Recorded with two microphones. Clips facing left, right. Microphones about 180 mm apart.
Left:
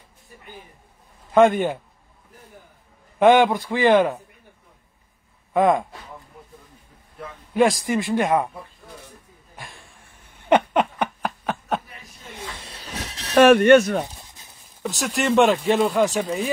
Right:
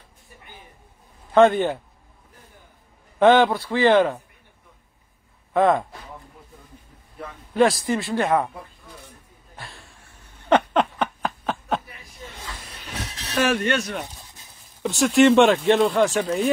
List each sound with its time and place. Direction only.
1.3 s speech: 10° left (ahead or behind)
3.2 s a man's voice: 10° left (ahead or behind)
5.5 s speech: 10° left (ahead or behind)
7.5 s speech: 10° left (ahead or behind)
10.5 s a sound: 10° left (ahead or behind)
13.3 s speech: 60° left (ahead or behind)
14.8 s speech: centre (ahead or behind)